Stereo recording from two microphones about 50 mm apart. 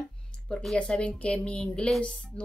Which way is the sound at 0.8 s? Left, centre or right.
Left.